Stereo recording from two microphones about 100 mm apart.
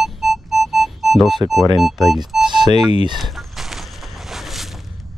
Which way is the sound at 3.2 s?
Centre (ahead or behind).